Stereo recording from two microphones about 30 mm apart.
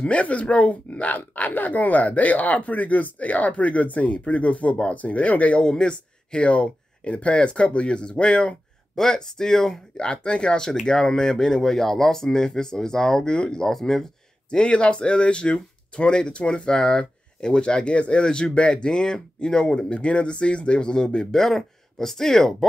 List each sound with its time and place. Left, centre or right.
0.0 s speech: left
5.6 s speech: left
6.4 s speech: left
8.9 s speech: centre
9.9 s speech: left
10.6 s speech: left
13.3 s speech: left
13.7 s speech: centre
14.5 s speech: left; by 22.7 s centre